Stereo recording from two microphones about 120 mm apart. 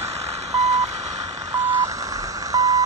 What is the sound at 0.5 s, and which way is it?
Vehicle, 70° right (ahead or behind).